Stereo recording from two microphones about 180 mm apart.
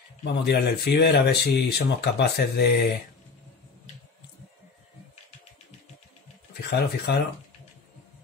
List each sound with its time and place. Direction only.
0.2 s speech: 65° left (ahead or behind)
6.7 s speech: 65° left (ahead or behind)